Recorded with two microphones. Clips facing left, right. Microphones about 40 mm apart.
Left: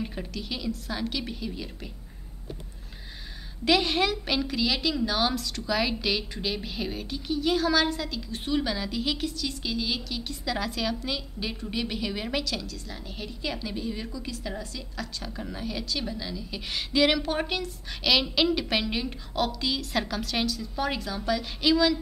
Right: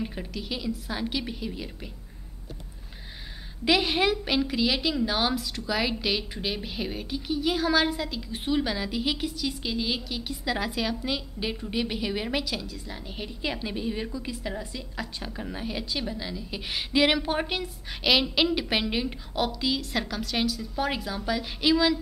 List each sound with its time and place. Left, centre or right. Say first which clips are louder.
0.0 s a woman's voice: right 1 dB; centre
3.6 s a woman's voice: even; centre